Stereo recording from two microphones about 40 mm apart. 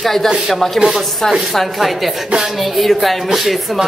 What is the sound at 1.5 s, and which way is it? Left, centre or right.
Speech, centre.